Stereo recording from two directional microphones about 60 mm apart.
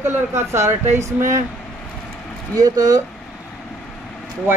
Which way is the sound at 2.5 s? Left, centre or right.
Right.